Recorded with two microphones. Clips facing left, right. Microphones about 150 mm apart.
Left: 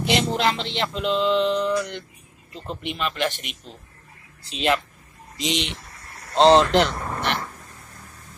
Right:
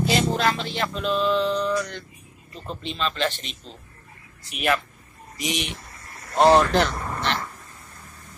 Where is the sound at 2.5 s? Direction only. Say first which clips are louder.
Left 2 dB; 15° left (ahead or behind).